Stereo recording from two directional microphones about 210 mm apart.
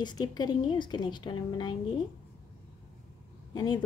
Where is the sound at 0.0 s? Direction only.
20° left (ahead or behind).